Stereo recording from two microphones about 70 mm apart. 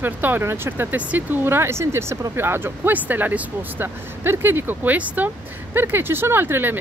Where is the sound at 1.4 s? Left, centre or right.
Right.